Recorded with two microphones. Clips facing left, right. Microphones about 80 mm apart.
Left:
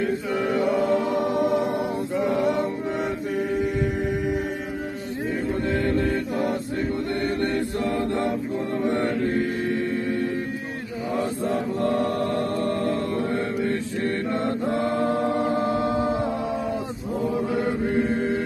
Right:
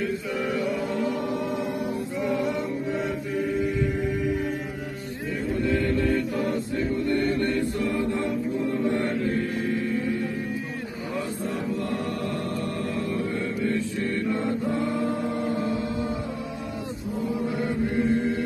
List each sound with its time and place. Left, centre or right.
0.0 s chant: left
1.2 s music: left
2.2 s mantra: left
5.6 s mantra: left
6.0 s mantra: left
6.4 s a capella: left
8.7 s chant: left
9.2 s mantra: left
11.4 s chant: left
14.4 s chant: left